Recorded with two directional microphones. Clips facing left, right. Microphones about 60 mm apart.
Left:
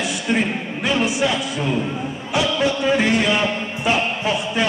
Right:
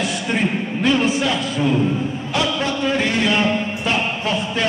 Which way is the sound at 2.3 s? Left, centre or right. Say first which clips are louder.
Left 3 dB; centre.